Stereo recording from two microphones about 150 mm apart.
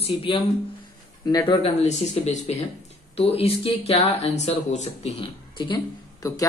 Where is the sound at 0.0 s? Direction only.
35° left (ahead or behind).